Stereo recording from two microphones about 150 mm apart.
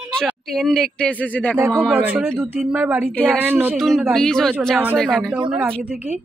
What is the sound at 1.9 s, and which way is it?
Speech, 10° right (ahead or behind).